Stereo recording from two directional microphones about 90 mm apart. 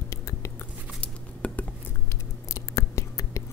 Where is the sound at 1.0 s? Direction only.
15° left (ahead or behind).